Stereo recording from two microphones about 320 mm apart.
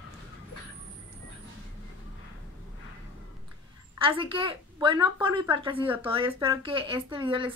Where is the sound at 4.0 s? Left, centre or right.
Centre.